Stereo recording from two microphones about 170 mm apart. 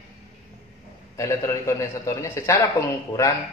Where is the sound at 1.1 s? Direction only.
15° left (ahead or behind).